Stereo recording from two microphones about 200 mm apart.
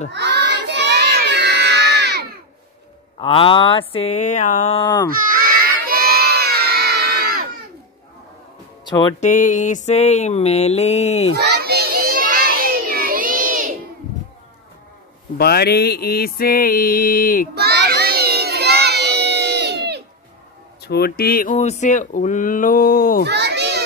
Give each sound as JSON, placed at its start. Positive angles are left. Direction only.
{"t": 0.1, "sound": "crowd", "side_deg": -60}
{"t": 3.2, "sound": "a sound", "side_deg": 25}
{"t": 5.1, "sound": "crowd", "side_deg": -45}
{"t": 8.8, "sound": "speech", "side_deg": 20}
{"t": 9.2, "sound": "mantra", "side_deg": 40}
{"t": 11.3, "sound": "children playing", "side_deg": -55}
{"t": 15.3, "sound": "mantra", "side_deg": 50}
{"t": 17.6, "sound": "crowd", "side_deg": -55}
{"t": 20.8, "sound": "mantra", "side_deg": 50}
{"t": 21.5, "sound": "mantra", "side_deg": 35}
{"t": 23.2, "sound": "children playing", "side_deg": -55}